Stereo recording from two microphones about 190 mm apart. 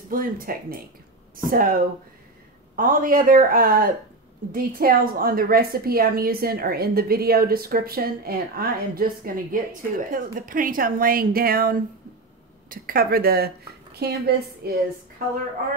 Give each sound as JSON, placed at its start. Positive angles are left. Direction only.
{"t": 0.1, "sound": "a woman's voice", "side_deg": -50}